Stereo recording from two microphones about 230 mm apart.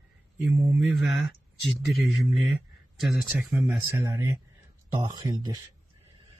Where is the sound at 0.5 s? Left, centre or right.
Centre.